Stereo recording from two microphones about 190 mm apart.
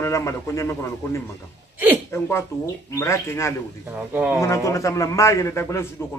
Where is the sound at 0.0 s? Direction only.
15° left (ahead or behind).